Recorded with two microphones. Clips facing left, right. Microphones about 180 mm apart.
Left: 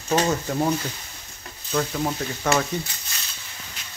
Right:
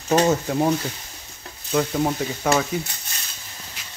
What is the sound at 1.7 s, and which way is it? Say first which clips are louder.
Speech: right 3 dB; 20° right (ahead or behind).